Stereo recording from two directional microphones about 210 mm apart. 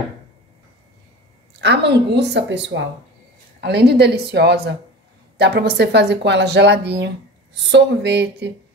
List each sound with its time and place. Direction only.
1.6 s a woman's voice: 55° right (ahead or behind)